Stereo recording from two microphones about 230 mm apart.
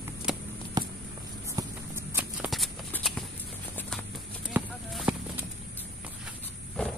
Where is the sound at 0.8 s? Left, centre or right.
Centre.